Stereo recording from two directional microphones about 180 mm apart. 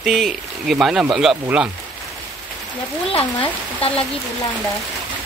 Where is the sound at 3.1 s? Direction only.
30° left (ahead or behind).